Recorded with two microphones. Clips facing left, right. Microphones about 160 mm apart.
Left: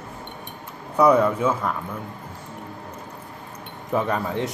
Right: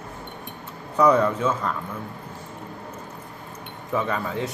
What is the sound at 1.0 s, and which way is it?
Speech, 10° left (ahead or behind).